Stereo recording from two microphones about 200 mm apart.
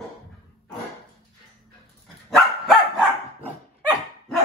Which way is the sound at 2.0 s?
Centre (ahead or behind).